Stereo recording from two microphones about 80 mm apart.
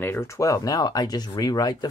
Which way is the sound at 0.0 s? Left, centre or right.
Left.